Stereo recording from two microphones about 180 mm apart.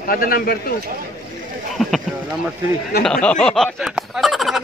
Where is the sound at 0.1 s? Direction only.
55° left (ahead or behind).